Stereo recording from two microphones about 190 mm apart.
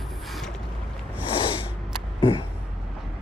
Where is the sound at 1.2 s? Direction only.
25° left (ahead or behind).